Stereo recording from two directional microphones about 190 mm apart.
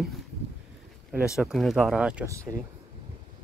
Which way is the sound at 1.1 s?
5° right (ahead or behind).